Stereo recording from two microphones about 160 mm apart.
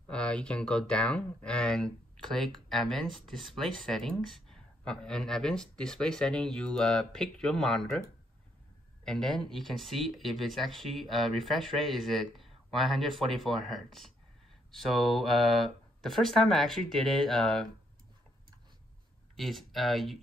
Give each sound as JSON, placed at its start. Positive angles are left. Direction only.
{"t": 0.1, "sound": "speech", "side_deg": 5}
{"t": 9.0, "sound": "speech", "side_deg": 5}
{"t": 19.3, "sound": "speech", "side_deg": 0}